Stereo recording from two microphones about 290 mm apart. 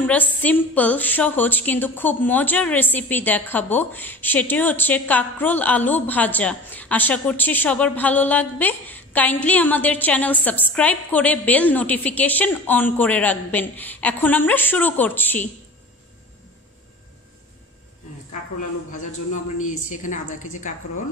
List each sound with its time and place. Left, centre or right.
0.0 s a woman's voice: centre
18.9 s a man's voice: left